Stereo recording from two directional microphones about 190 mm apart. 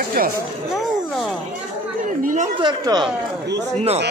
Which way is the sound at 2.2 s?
45° right (ahead or behind).